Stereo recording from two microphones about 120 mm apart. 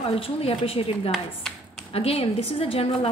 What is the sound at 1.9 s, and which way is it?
A woman's voice, 55° left (ahead or behind).